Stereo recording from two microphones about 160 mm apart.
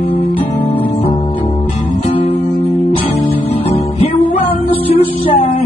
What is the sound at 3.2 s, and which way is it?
Music, 40° left (ahead or behind).